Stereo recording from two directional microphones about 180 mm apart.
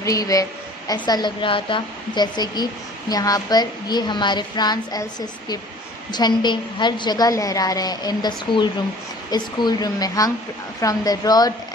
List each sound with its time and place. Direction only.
0.0 s a woman's voice: 20° left (ahead or behind)